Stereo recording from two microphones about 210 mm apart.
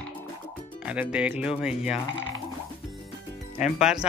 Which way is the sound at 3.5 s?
35° left (ahead or behind).